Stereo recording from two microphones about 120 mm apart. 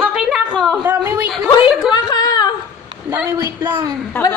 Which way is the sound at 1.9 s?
35° left (ahead or behind).